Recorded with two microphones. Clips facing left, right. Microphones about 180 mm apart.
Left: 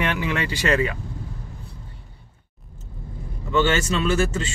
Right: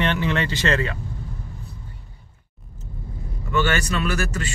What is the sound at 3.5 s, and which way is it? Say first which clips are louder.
Speech: left 2 dB; 20° left (ahead or behind).